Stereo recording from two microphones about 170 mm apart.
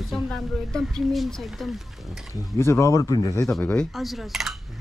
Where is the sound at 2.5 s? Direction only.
15° left (ahead or behind).